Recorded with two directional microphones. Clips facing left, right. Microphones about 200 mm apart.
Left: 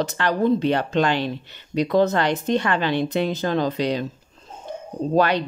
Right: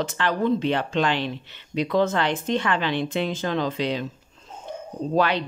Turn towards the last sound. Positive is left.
turn(degrees=45)  # may be behind; listen again after turning